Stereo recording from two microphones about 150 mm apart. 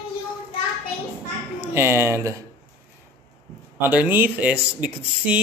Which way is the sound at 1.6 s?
15° right (ahead or behind).